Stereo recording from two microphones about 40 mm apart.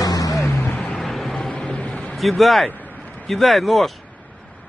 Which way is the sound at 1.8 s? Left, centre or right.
Left.